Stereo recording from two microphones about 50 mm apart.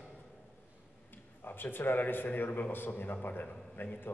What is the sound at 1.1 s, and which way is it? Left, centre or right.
A man's voice, left.